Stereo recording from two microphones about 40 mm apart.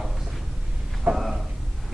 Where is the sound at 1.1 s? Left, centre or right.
Right.